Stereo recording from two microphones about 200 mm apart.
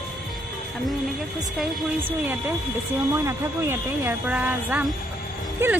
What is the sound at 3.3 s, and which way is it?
Speech, 10° right (ahead or behind).